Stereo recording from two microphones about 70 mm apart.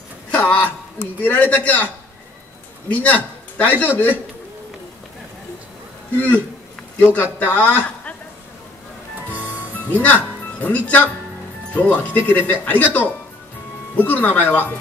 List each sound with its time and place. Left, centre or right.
0.3 s speech: left
2.9 s a man's voice: left
6.1 s speech: left
10.0 s speech: left